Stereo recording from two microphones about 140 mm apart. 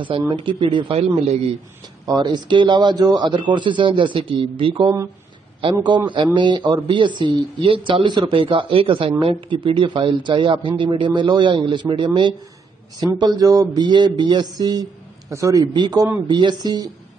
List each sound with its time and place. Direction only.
0.3 s speech: 35° right (ahead or behind)
2.1 s speech: 35° right (ahead or behind)